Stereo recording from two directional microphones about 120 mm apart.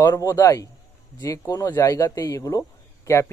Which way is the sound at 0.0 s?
25° left (ahead or behind).